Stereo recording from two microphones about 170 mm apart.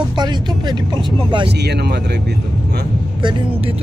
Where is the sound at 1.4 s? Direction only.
80° right.